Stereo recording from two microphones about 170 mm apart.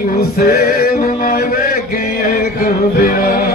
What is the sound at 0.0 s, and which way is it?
Male singing, 60° left (ahead or behind).